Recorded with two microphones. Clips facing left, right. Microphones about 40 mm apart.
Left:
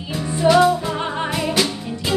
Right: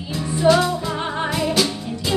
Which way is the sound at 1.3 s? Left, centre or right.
Left.